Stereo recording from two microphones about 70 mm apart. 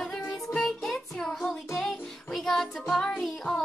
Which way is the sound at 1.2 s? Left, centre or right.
Centre.